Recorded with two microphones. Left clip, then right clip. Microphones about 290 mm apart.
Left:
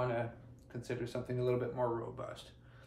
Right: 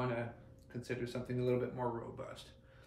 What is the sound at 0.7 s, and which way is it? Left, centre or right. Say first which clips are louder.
Speech: left 1 dB; centre.